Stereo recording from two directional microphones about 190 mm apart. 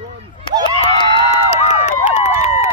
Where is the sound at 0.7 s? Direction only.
30° left (ahead or behind).